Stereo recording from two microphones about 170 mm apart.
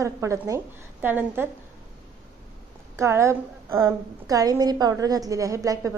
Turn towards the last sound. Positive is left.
turn(degrees=-20)  # may be behind; listen again after turning